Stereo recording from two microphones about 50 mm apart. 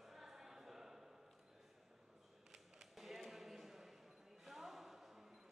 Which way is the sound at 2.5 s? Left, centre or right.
Centre.